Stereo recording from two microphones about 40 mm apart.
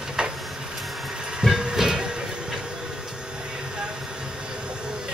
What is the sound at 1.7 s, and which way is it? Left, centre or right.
Train, centre.